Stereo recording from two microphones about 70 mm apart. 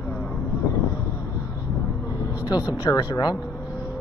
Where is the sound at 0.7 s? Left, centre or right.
Left.